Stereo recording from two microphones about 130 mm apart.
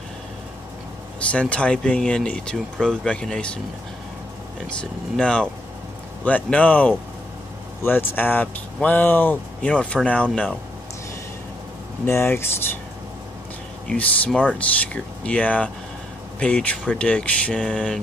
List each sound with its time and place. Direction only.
1.3 s speech: 10° left (ahead or behind)
4.6 s speech: 5° left (ahead or behind)
12.1 s speech: 20° left (ahead or behind)
13.8 s speech: 10° left (ahead or behind)